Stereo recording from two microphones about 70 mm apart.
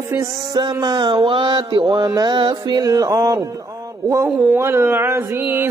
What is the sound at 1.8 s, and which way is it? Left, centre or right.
Music, right.